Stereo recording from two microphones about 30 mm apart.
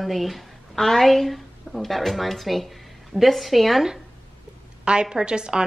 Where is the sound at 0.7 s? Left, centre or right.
Centre.